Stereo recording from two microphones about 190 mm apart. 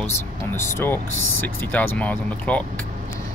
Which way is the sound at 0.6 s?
15° left (ahead or behind).